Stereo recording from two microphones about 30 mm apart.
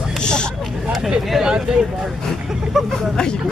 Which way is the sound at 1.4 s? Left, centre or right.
Right.